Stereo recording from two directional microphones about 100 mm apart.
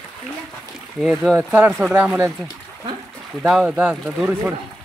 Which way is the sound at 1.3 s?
15° right (ahead or behind).